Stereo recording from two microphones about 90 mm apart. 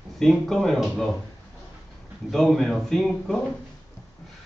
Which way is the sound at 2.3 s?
5° left (ahead or behind).